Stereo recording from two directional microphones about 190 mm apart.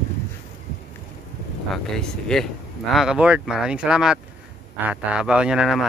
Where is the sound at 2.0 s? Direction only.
5° left (ahead or behind).